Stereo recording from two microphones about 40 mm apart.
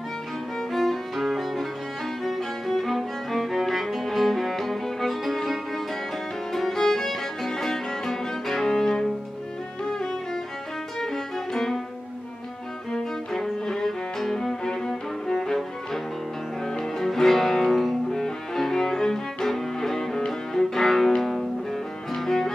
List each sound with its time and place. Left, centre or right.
0.7 s music: centre
9.8 s violin: centre
11.0 s music: centre
12.9 s music: centre